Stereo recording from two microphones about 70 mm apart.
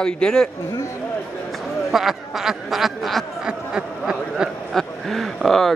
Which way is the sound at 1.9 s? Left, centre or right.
Centre.